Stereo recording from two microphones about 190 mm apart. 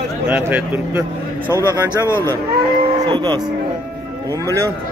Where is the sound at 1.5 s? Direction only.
15° left (ahead or behind).